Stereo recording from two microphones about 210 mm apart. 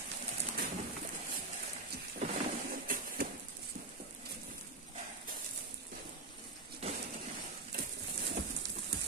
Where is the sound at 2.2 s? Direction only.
40° right (ahead or behind).